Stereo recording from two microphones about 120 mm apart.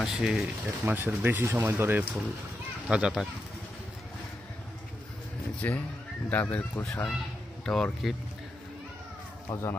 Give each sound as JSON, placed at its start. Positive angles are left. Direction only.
{"t": 0.0, "sound": "speech", "side_deg": 0}
{"t": 0.8, "sound": "speech", "side_deg": -15}
{"t": 2.9, "sound": "speech", "side_deg": -5}
{"t": 5.6, "sound": "speech", "side_deg": 15}
{"t": 9.5, "sound": "speech", "side_deg": 25}